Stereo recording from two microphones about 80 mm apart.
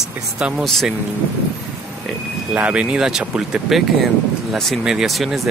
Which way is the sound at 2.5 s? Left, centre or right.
Centre.